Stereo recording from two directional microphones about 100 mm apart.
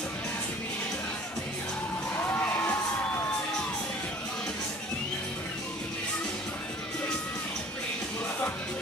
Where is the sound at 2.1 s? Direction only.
15° left (ahead or behind).